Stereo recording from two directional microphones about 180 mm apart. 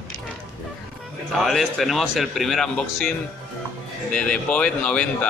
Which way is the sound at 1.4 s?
Centre (ahead or behind).